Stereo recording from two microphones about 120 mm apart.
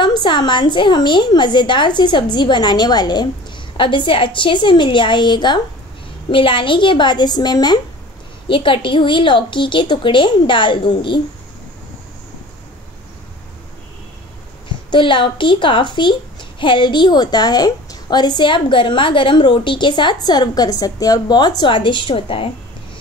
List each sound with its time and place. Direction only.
0.0 s a child's voice: 40° left (ahead or behind)
8.5 s a woman's voice: 45° left (ahead or behind)
14.9 s a child's voice: 40° left (ahead or behind)